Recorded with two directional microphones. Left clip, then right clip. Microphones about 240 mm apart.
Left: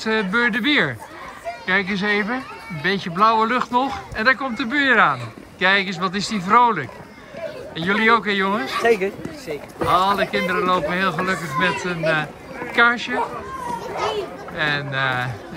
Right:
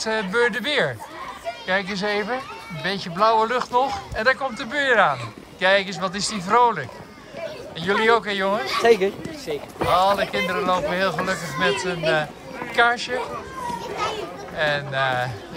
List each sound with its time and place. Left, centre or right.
0.0 s speech: centre
8.8 s speech: right
9.8 s speech: centre
13.7 s children playing: centre
14.6 s speech: centre